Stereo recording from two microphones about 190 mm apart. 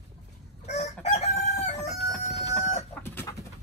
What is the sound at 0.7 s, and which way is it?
Chicken, 35° left (ahead or behind).